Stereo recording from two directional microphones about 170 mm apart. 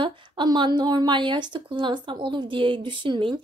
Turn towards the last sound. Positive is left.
turn(degrees=-30)  # may be behind; listen again after turning